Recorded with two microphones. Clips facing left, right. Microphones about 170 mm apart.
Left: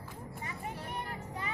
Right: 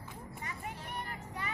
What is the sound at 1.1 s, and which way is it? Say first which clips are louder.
Music: left 2 dB; 30° left (ahead or behind).